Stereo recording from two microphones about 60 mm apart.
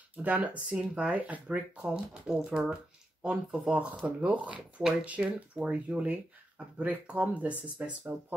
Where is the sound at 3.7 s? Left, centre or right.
Right.